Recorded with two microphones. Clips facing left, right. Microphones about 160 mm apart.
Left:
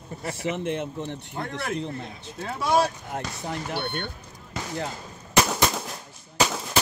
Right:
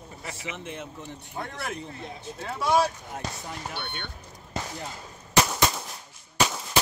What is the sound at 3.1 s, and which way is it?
Speech, 65° left (ahead or behind).